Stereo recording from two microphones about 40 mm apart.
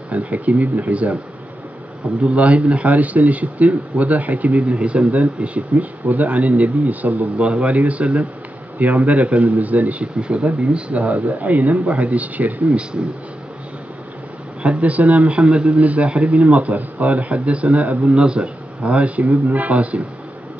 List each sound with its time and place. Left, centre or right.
0.1 s a man's voice: right
2.2 s a man's voice: right
10.2 s a man's voice: right
14.6 s a man's voice: right